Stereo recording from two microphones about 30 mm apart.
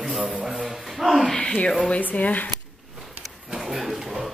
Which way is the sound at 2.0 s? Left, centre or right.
Left.